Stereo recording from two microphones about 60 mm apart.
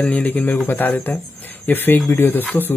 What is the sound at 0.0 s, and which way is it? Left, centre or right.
Speech, left.